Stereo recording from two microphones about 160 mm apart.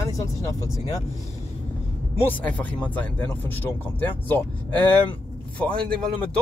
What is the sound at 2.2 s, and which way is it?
Speech, 10° left (ahead or behind).